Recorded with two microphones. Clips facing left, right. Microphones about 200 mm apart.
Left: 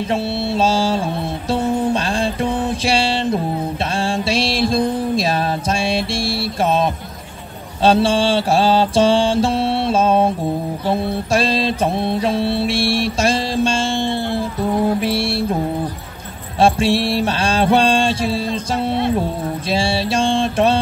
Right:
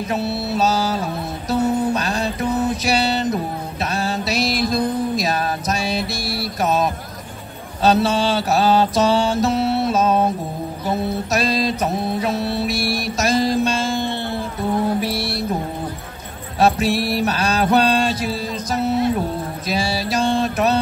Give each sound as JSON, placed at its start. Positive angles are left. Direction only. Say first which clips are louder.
{"t": 0.1, "sound": "mantra", "louder": "left 1 dB", "side_deg": 30}
{"t": 1.5, "sound": "music", "louder": "even", "side_deg": 30}
{"t": 3.9, "sound": "mantra", "louder": "left 2 dB", "side_deg": 30}
{"t": 10.9, "sound": "music", "louder": "left 3 dB", "side_deg": 30}
{"t": 15.0, "sound": "mantra", "louder": "left 4 dB", "side_deg": 25}
{"t": 16.5, "sound": "mantra", "louder": "left 2 dB", "side_deg": 30}